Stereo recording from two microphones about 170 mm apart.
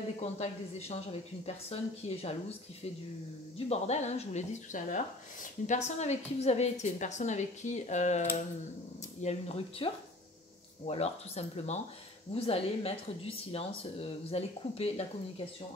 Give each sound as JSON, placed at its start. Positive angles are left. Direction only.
{"t": 0.2, "sound": "speech", "side_deg": 40}
{"t": 3.5, "sound": "speech", "side_deg": 40}